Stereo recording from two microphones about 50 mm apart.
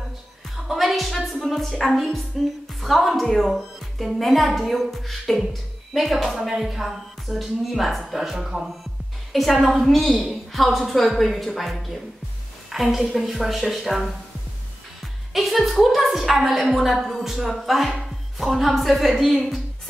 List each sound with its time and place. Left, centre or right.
0.7 s music: centre
1.4 s a woman's voice: centre
15.3 s a woman's voice: centre